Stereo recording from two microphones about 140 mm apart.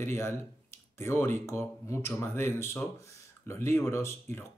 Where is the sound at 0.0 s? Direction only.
15° left (ahead or behind).